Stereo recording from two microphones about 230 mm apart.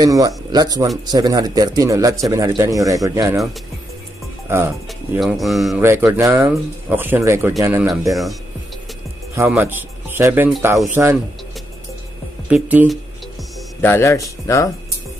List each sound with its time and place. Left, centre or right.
0.0 s a man's voice: centre
4.5 s a man's voice: centre
9.3 s a man's voice: centre
12.4 s speech: centre
13.7 s speech: centre